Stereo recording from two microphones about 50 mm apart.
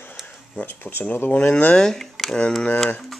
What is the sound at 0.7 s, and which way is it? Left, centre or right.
Speech, left.